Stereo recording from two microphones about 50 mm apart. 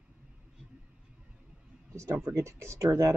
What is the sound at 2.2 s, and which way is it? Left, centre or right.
Speech, right.